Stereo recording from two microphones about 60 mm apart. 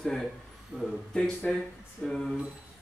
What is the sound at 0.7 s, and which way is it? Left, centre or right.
Speech, centre.